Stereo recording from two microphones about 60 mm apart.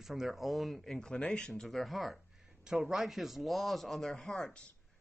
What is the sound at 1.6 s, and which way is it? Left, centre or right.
Speech, centre.